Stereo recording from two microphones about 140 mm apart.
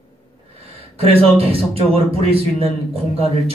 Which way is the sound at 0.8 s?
45° right (ahead or behind).